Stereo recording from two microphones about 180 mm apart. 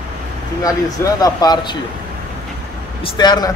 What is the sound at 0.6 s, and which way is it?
Speech, 20° left (ahead or behind).